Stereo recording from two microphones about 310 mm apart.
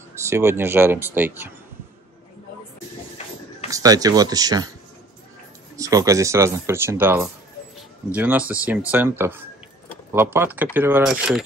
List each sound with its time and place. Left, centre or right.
0.3 s speech: centre
3.7 s speech: centre
5.8 s speech: centre